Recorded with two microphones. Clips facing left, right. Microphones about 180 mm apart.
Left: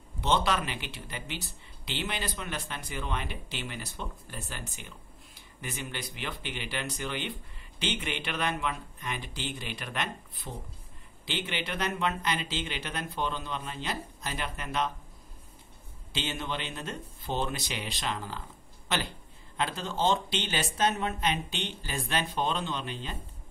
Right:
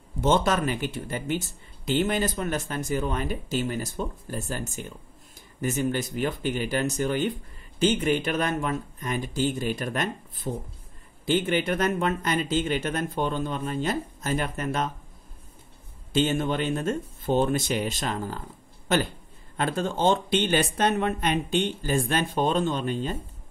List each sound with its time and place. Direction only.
0.2 s speech: 45° right (ahead or behind)
16.1 s speech: 50° right (ahead or behind)
19.5 s speech: 50° right (ahead or behind)